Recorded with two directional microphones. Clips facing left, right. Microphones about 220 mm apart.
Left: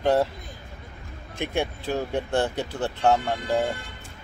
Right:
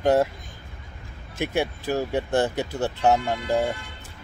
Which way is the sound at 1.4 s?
5° right (ahead or behind).